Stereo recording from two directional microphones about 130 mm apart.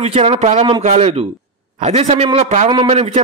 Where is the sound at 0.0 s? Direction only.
50° right (ahead or behind).